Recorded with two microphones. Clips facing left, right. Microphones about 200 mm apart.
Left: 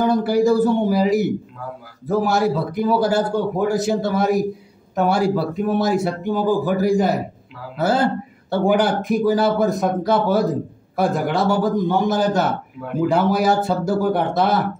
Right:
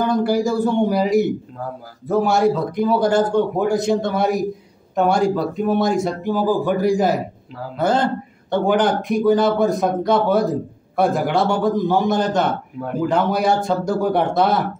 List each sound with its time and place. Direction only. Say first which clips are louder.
0.2 s speech: left 2 dB; centre (ahead or behind)